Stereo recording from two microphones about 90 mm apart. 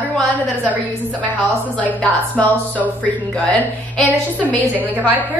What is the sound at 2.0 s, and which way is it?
Speech, 15° left (ahead or behind).